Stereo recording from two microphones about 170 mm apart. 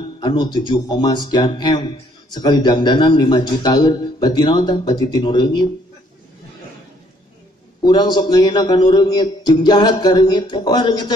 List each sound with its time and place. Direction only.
0.2 s speech: 25° left (ahead or behind)
7.8 s speech: 25° left (ahead or behind)